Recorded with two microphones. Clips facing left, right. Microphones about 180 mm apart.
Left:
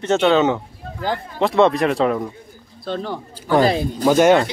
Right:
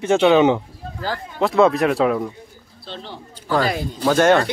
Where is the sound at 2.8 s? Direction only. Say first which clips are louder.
Left 9 dB; 50° left (ahead or behind).